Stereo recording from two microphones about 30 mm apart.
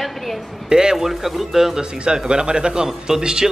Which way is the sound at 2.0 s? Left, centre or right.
Right.